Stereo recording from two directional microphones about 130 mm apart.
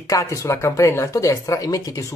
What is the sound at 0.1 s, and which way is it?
Speech, 25° left (ahead or behind).